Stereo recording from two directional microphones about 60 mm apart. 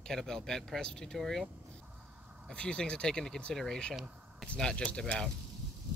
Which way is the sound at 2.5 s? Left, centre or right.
Centre.